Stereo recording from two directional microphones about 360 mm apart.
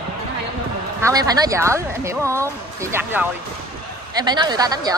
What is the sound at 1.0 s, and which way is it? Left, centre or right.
Speech, centre.